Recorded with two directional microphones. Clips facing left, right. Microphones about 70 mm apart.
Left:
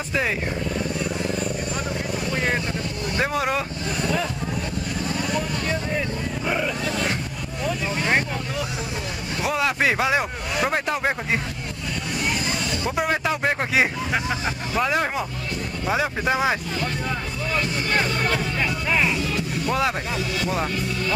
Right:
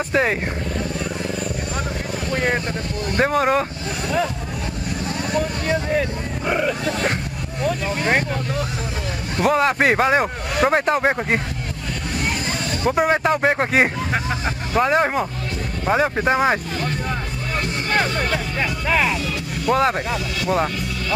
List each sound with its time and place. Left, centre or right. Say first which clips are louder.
0.1 s speech: right 5 dB; right
2.7 s vehicle: right 3 dB; right
5.0 s vehicle: right 4 dB; right
5.7 s vehicle: right 5 dB; right
6.8 s speech: right 3 dB; right
9.4 s speech: right 5 dB; right
12.8 s speech: right 7 dB; right
14.8 s speech: right 5 dB; right
17.6 s music: right 3 dB; right
18.3 s speech: right 1 dB; right